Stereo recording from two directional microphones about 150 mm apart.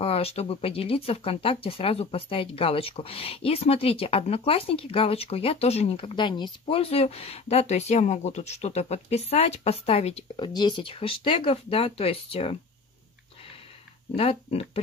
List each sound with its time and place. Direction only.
0.0 s speech: 40° left (ahead or behind)